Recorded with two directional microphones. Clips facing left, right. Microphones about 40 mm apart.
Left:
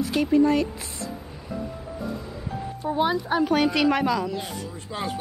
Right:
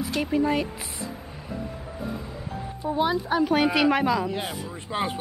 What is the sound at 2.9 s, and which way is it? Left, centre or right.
Speech, centre.